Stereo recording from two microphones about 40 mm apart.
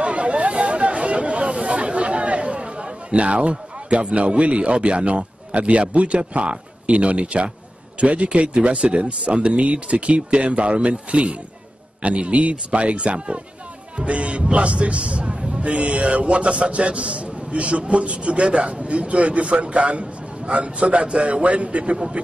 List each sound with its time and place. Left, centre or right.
0.0 s chatter: right
8.0 s a man's voice: right